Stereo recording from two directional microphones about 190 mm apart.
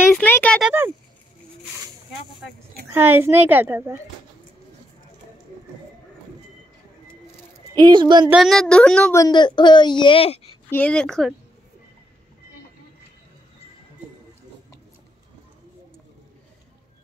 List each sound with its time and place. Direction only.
0.1 s a sound: 10° left (ahead or behind)
0.6 s a woman's voice: 10° right (ahead or behind)
2.9 s a woman's voice: 10° right (ahead or behind)
7.7 s speech: 25° right (ahead or behind)
8.3 s speech: centre (ahead or behind)
9.2 s a woman's voice: 25° left (ahead or behind)
10.7 s speech: 5° left (ahead or behind)